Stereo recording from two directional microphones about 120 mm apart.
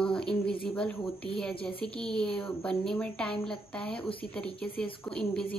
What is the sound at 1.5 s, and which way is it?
Speech, 50° left (ahead or behind).